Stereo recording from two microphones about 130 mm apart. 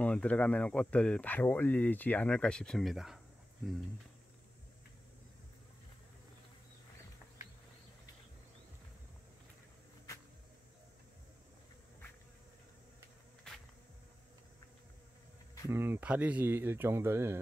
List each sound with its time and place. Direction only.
0.0 s speech: 10° left (ahead or behind)
15.7 s speech: 15° right (ahead or behind)